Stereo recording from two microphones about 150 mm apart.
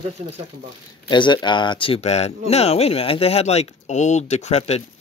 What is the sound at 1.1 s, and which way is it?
Speech, 30° left (ahead or behind).